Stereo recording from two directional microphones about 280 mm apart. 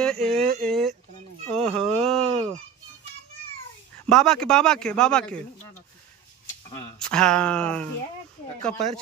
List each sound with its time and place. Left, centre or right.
0.0 s speech: centre
1.5 s a sound: centre
4.1 s speech: centre
7.0 s speech: centre